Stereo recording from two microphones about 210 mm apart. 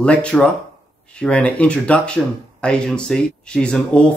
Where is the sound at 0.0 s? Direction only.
5° left (ahead or behind).